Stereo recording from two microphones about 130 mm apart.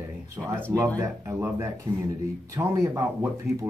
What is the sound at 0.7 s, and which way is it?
Speech, 20° right (ahead or behind).